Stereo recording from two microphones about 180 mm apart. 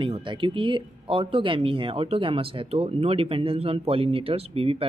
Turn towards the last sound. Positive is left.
turn(degrees=-30)  # may be behind; listen again after turning